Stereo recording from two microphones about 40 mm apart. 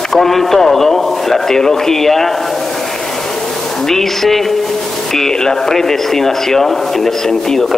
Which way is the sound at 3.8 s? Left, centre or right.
Centre.